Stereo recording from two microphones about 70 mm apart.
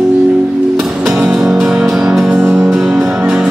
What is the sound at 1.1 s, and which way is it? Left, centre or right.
Music, centre.